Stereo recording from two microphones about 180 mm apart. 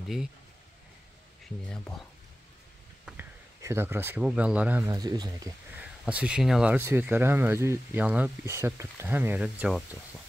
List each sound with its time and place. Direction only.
3.1 s speech: 10° right (ahead or behind)
4.9 s speech: 20° right (ahead or behind)
5.8 s speech: 5° right (ahead or behind)